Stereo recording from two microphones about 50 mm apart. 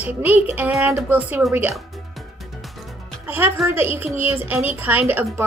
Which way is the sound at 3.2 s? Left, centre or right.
Right.